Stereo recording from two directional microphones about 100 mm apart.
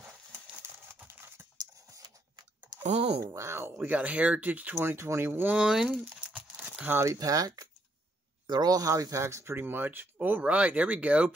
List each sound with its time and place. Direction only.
1.9 s a sound: 40° right (ahead or behind)
3.3 s speech: 25° right (ahead or behind)
3.7 s speech: 15° right (ahead or behind)
5.6 s crumpling: 5° right (ahead or behind); by 7.2 s 25° right (ahead or behind)
7.2 s speech: 35° right (ahead or behind); by 11.3 s 15° right (ahead or behind)